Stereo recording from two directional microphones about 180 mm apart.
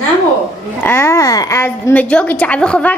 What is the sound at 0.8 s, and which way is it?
Speech, 15° left (ahead or behind).